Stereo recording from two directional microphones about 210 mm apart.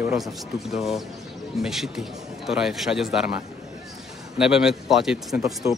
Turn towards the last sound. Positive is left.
turn(degrees=0)  # may be behind; listen again after turning